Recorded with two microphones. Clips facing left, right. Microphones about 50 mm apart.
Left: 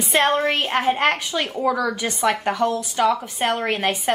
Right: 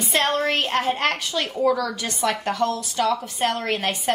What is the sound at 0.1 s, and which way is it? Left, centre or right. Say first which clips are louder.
A woman's voice: left 3 dB; centre.